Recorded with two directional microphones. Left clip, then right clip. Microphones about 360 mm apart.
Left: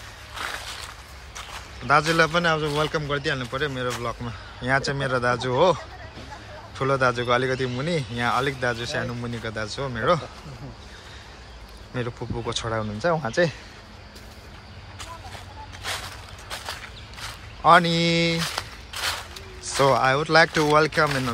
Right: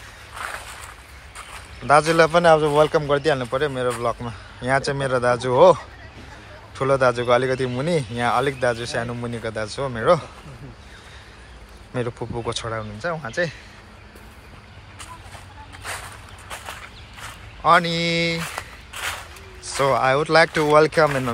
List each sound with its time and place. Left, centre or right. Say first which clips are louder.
1.9 s a man's voice: right 4 dB; centre
6.8 s a man's voice: right 4 dB; centre
11.9 s speech: right 4 dB; centre
15.8 s a sound: left 1 dB; centre
17.2 s speech: left 1 dB; centre
18.4 s a sound: left 2 dB; centre